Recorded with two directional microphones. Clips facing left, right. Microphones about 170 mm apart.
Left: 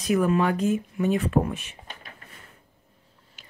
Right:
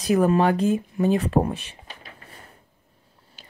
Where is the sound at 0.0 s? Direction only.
35° right (ahead or behind).